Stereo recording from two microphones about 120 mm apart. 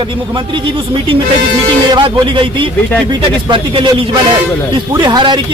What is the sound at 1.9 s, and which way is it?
Speech, 40° right (ahead or behind).